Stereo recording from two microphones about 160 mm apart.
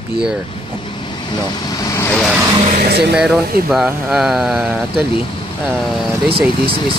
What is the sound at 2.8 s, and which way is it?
Speech, 90° right.